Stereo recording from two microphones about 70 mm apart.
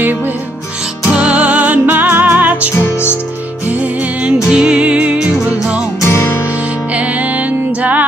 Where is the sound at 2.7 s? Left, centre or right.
Left.